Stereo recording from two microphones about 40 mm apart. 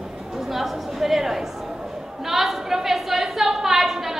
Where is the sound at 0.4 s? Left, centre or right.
Centre.